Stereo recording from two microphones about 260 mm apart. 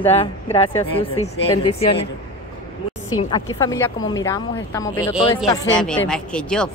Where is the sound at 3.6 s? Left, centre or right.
Centre.